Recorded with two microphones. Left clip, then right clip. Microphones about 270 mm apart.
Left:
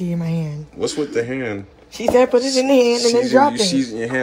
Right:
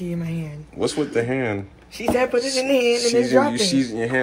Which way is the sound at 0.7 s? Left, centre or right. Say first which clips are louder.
Left 1 dB; centre.